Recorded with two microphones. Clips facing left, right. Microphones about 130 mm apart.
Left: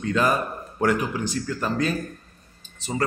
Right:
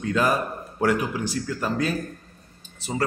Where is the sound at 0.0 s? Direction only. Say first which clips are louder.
Even; 5° right (ahead or behind).